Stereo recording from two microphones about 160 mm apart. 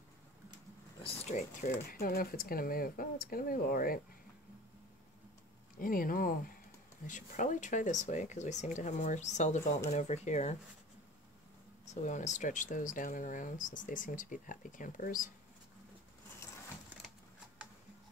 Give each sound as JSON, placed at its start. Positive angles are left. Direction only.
{"t": 1.0, "sound": "speech", "side_deg": 40}
{"t": 5.8, "sound": "speech", "side_deg": 60}
{"t": 11.8, "sound": "speech", "side_deg": 45}